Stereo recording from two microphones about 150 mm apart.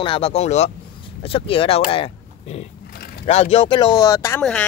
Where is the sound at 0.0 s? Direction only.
35° left (ahead or behind).